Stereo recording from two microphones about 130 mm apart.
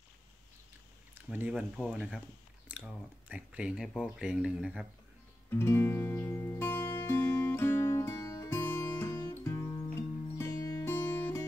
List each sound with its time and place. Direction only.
1.1 s speech: 10° right (ahead or behind)
5.5 s music: 20° left (ahead or behind)